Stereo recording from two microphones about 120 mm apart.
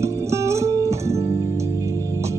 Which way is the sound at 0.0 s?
25° right (ahead or behind).